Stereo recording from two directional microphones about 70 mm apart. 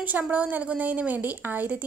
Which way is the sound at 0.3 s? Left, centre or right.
Right.